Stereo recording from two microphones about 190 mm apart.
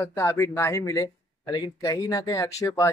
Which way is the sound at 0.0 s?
15° left (ahead or behind).